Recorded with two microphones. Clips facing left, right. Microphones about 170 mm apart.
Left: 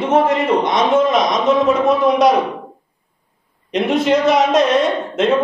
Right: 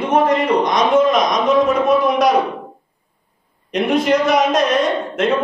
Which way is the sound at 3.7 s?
25° left (ahead or behind).